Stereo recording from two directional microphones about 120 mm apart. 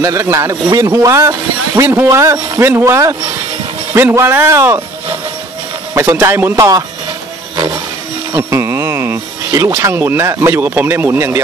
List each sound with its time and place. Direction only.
0.0 s a man's voice: 25° right (ahead or behind)
5.9 s speech: 20° right (ahead or behind)
7.5 s a sound: 35° right (ahead or behind)
8.3 s speech: 25° right (ahead or behind)